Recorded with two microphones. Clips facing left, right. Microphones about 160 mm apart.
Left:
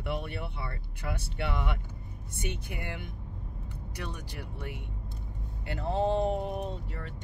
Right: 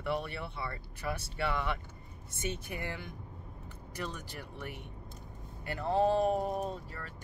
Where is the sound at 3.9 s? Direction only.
15° left (ahead or behind).